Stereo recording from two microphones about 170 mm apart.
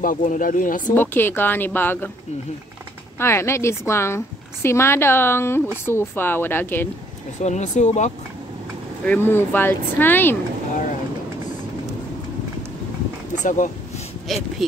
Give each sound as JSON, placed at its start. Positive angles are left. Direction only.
{"t": 0.0, "sound": "speech", "side_deg": 50}
{"t": 0.9, "sound": "a woman's voice", "side_deg": 10}
{"t": 3.2, "sound": "a woman's voice", "side_deg": 15}
{"t": 7.3, "sound": "speech", "side_deg": 45}
{"t": 9.0, "sound": "a woman's voice", "side_deg": 10}
{"t": 13.4, "sound": "speech", "side_deg": 45}
{"t": 14.3, "sound": "speech", "side_deg": 0}